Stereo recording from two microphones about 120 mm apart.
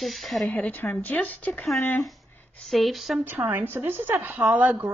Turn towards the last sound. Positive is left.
turn(degrees=-15)  # may be behind; listen again after turning